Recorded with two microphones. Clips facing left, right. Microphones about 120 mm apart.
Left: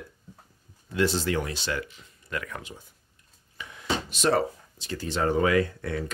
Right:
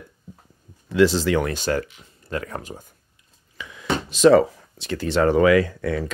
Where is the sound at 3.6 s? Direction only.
90° right.